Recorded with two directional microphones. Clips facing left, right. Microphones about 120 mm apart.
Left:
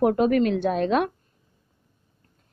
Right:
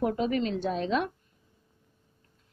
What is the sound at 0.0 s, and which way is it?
A woman's voice, 60° left (ahead or behind).